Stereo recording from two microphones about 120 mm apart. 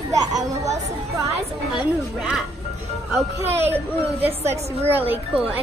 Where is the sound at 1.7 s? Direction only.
5° right (ahead or behind).